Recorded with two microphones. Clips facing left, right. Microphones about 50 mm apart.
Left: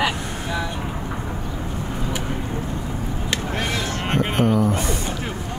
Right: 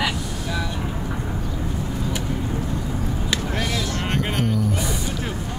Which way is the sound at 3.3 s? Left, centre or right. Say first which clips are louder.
Left 1 dB; left.